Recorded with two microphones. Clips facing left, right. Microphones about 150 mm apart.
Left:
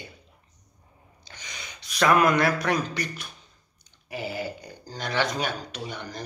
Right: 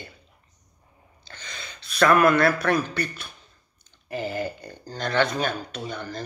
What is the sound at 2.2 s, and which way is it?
Speech, 15° left (ahead or behind).